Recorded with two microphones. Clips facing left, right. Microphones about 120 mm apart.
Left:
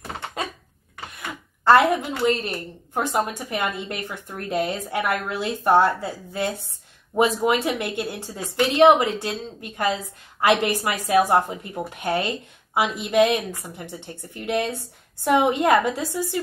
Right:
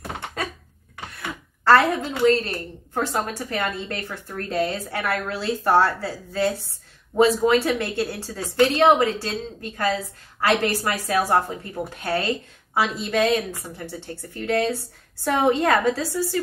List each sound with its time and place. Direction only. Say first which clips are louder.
1.1 s a woman's voice: right 2 dB; 15° left (ahead or behind)